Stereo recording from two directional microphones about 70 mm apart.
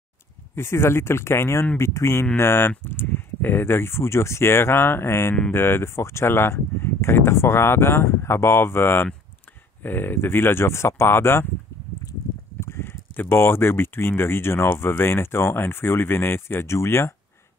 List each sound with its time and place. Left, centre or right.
0.6 s speech: left
12.5 s speech: left